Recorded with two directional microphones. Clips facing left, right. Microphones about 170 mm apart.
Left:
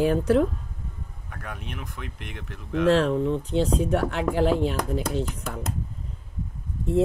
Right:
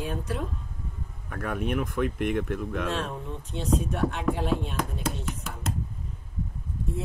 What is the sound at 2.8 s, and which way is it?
Speech, 90° left.